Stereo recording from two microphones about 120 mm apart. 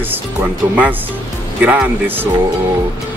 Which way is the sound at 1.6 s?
10° right (ahead or behind).